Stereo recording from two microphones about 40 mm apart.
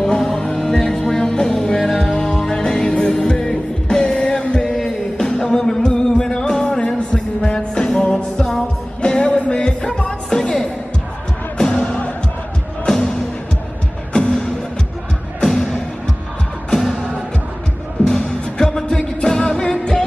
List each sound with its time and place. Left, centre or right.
0.0 s music: centre
18.0 s music: left